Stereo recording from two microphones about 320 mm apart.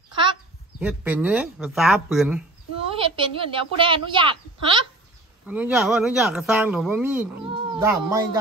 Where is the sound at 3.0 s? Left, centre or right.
Centre.